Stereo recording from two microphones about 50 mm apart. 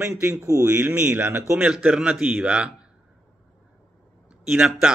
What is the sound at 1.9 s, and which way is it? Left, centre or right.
Speech, centre.